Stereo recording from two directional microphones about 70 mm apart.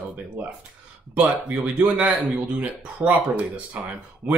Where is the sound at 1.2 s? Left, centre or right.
Centre.